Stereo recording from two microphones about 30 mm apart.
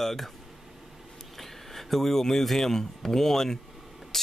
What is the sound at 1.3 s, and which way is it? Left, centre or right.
Speech, centre.